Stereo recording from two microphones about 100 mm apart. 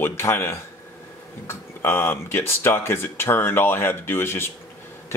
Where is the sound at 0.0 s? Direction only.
25° left (ahead or behind).